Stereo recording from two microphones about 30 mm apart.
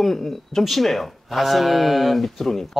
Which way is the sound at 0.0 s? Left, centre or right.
Centre.